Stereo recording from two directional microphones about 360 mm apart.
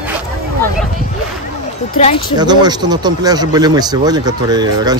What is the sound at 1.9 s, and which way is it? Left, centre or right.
Speech, centre.